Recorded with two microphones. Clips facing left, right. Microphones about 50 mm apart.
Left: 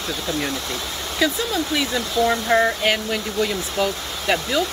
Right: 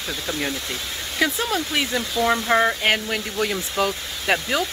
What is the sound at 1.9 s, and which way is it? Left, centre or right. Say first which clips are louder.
Speech: left 1 dB; right.